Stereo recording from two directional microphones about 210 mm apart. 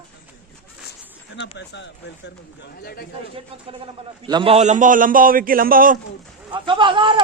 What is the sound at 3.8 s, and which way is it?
A man's voice, 25° right (ahead or behind).